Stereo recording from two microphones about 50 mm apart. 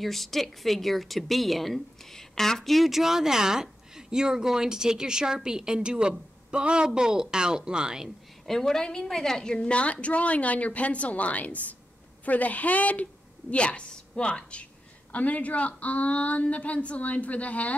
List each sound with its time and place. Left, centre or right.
0.0 s a woman's voice: centre
8.5 s a woman's voice: centre; by 17.7 s left